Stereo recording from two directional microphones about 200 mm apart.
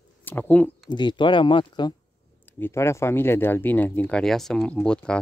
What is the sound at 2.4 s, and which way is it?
Speech, 10° left (ahead or behind).